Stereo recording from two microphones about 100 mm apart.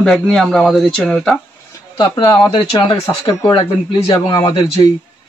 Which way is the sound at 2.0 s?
45° left (ahead or behind).